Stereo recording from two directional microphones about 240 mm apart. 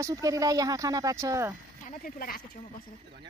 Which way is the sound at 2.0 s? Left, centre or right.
Left.